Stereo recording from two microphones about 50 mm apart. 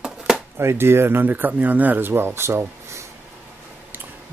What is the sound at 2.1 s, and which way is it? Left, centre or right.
Speech, right.